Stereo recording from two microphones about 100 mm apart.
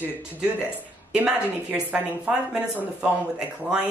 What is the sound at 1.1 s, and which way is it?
Speech, 10° right (ahead or behind).